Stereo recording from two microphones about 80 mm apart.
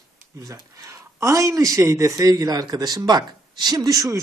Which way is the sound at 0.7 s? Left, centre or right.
Right.